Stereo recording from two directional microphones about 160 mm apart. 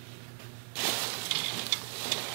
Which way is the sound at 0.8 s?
15° right (ahead or behind).